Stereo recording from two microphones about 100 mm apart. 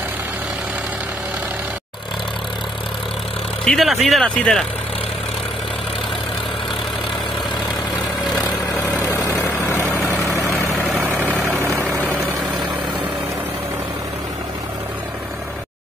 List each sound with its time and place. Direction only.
3.6 s speech: centre (ahead or behind)
9.8 s vehicle: 15° left (ahead or behind)
11.0 s vehicle: 20° right (ahead or behind)